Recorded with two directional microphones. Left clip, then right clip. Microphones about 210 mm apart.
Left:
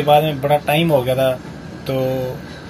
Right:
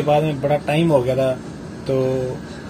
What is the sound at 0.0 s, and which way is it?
Speech, centre (ahead or behind).